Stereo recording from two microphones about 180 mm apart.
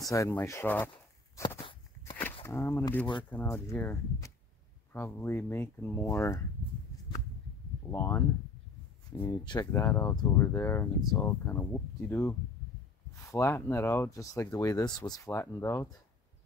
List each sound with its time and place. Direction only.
0.0 s speech: 15° left (ahead or behind)
1.3 s walk: 15° left (ahead or behind)
1.6 s walk: 30° left (ahead or behind)
2.4 s speech: 15° left (ahead or behind)
7.9 s speech: 15° left (ahead or behind)
9.4 s speech: 20° left (ahead or behind)